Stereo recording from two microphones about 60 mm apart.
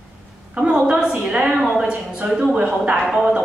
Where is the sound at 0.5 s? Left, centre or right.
Centre.